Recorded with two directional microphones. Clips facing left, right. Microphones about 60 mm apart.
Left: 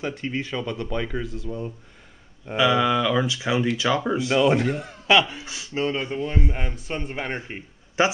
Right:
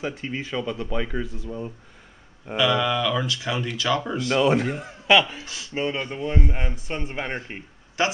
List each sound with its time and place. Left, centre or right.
0.0 s speech: centre
2.5 s speech: centre
4.4 s speech: centre
5.4 s speech: centre
5.8 s speech: centre
7.3 s a man's voice: centre